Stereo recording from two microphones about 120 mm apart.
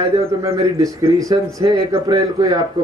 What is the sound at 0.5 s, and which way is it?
Speech, 25° right (ahead or behind).